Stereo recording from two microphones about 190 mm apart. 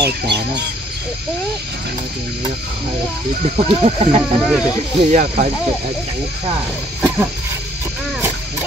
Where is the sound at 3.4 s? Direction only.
35° right (ahead or behind).